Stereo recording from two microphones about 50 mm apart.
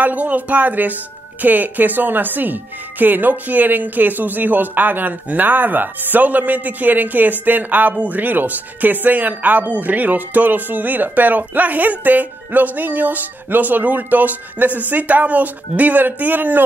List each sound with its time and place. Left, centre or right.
0.0 s speech: right